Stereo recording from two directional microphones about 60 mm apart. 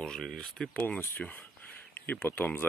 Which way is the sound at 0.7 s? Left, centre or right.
Left.